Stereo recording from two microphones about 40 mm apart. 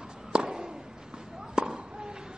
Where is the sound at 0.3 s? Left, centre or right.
Centre.